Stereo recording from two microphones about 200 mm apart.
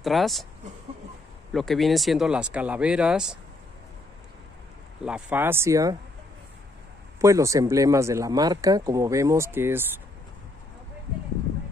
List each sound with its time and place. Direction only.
0.0 s speech: centre (ahead or behind)
1.5 s speech: centre (ahead or behind)
5.0 s speech: 5° right (ahead or behind)
7.2 s speech: 15° right (ahead or behind)